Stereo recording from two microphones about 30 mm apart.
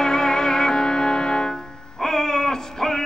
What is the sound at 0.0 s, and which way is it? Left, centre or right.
Music, left.